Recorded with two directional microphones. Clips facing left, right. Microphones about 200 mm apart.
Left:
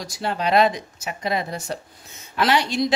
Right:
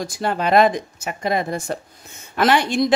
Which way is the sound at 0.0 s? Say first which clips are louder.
Right 3 dB; 50° right (ahead or behind).